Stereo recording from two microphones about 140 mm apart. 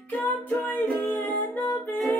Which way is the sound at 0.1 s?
10° left (ahead or behind).